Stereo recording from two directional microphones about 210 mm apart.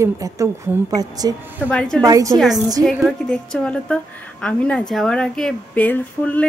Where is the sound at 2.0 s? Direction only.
15° right (ahead or behind).